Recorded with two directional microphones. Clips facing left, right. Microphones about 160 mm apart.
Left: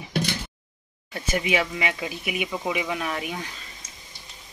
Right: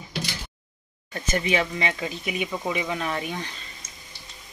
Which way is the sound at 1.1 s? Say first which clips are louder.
Even; 10° left (ahead or behind).